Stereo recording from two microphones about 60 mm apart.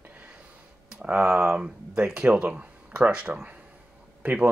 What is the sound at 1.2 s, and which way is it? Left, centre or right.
Speech, centre.